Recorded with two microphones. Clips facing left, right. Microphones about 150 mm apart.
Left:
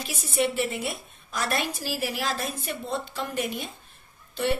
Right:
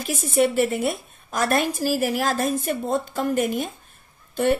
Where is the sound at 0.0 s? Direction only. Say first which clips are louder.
Right 6 dB; 50° right (ahead or behind).